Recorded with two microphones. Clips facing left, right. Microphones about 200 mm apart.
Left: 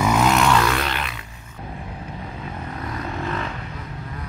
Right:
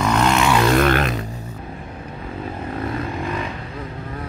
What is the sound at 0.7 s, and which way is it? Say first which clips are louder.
Music: right 9 dB; 50° right (ahead or behind).